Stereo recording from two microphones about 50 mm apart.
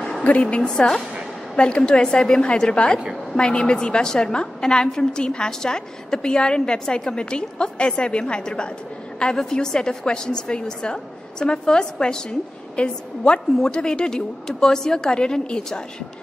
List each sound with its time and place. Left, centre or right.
0.2 s a woman's voice: left
0.6 s a woman's voice: centre